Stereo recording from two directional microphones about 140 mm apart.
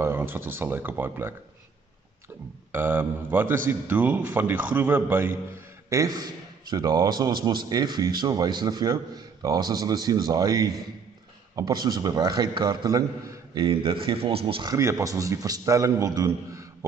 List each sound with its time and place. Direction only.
0.0 s a man's voice: 15° right (ahead or behind)
2.7 s a man's voice: 15° right (ahead or behind)
5.9 s a man's voice: 25° right (ahead or behind)
13.6 s speech: 40° right (ahead or behind)
14.7 s a man's voice: 20° right (ahead or behind)